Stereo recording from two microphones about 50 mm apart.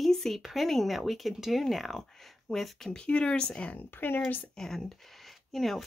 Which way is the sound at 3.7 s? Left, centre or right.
Left.